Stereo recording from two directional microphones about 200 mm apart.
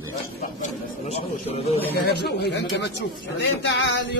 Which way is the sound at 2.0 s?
55° left (ahead or behind).